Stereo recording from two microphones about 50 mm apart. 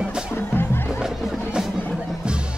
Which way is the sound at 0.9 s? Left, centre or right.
Centre.